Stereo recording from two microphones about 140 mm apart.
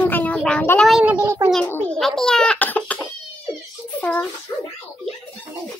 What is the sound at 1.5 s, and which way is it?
A child's voice, 10° left (ahead or behind).